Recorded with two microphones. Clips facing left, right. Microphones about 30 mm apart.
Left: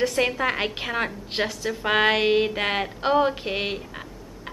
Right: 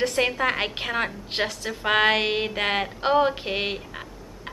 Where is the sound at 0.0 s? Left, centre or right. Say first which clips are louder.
Even; centre.